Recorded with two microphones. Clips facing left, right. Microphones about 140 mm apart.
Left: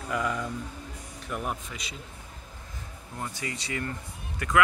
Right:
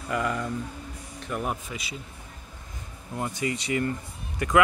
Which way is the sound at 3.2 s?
20° right (ahead or behind).